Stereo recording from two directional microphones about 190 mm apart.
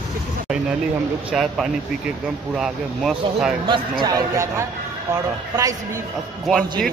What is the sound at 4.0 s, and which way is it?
A man's voice, 15° right (ahead or behind).